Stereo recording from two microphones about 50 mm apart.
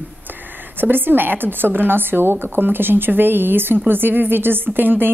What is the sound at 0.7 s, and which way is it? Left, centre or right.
A woman's voice, right.